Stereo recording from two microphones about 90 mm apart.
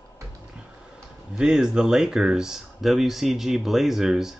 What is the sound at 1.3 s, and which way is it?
Speech, 5° right (ahead or behind).